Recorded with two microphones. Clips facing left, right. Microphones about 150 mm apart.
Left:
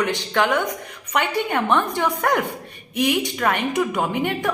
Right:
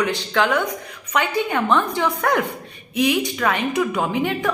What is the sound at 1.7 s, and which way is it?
Speech, 15° left (ahead or behind).